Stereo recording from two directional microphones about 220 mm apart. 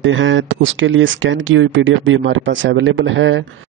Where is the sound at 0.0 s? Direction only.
60° right (ahead or behind).